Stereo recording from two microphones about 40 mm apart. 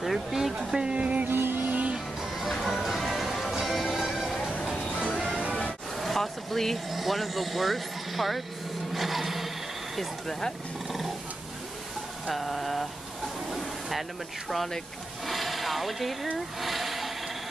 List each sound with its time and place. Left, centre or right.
0.0 s a sound: centre
0.9 s music: right
1.2 s vehicle: right
1.7 s music: right
2.6 s music: centre
5.9 s vehicle: centre
6.9 s speech: centre
8.9 s a sound: centre
9.9 s speech: centre
10.9 s roaring cats: centre
12.3 s a sound: centre
15.2 s a sound: centre
16.3 s speech: centre